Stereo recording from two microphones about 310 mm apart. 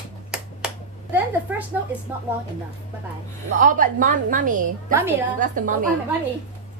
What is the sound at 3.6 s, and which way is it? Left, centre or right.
A woman's voice, right.